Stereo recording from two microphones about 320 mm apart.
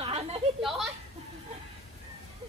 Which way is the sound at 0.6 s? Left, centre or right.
Centre.